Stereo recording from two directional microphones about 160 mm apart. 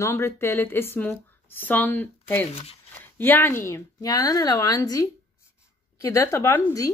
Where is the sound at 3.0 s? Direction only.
15° left (ahead or behind).